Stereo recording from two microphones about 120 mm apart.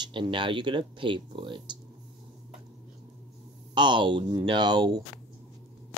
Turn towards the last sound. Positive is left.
turn(degrees=-35)  # may be behind; listen again after turning